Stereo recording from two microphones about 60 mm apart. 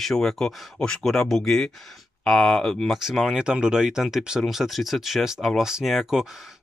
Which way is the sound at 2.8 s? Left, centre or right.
Centre.